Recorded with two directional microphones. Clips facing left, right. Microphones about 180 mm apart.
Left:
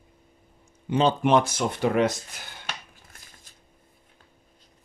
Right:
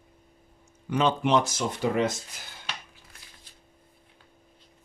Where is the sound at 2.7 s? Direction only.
45° left (ahead or behind).